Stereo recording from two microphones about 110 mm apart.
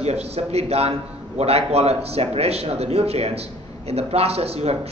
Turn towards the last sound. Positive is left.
turn(degrees=-70)  # may be behind; listen again after turning